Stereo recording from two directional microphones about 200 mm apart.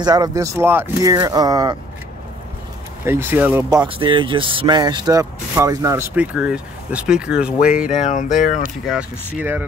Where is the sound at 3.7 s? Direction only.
25° right (ahead or behind); by 7.5 s 5° right (ahead or behind).